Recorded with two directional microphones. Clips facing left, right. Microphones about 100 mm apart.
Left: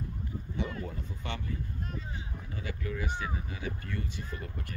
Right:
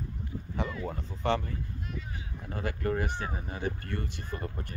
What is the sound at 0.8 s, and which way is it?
Speech, 40° right (ahead or behind).